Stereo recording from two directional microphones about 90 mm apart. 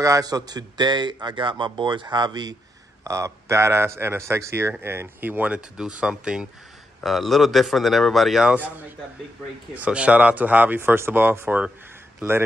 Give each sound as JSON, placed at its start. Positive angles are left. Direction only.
{"t": 0.0, "sound": "speech", "side_deg": -40}
{"t": 3.0, "sound": "speech", "side_deg": -35}
{"t": 5.8, "sound": "speech", "side_deg": -10}
{"t": 8.5, "sound": "speech", "side_deg": -20}